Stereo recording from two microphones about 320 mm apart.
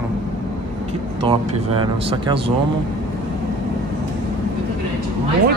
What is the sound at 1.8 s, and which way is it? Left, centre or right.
Speech, centre.